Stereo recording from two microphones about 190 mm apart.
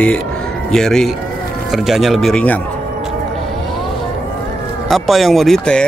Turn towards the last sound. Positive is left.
turn(degrees=5)  # may be behind; listen again after turning